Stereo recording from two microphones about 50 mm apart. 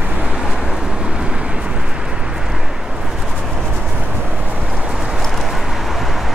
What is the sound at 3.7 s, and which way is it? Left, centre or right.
Vehicle, right.